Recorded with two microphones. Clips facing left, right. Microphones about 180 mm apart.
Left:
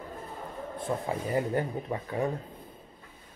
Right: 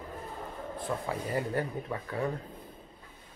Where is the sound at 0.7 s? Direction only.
20° left (ahead or behind).